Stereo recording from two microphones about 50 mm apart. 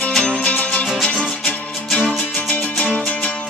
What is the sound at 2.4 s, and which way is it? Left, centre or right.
Music, left.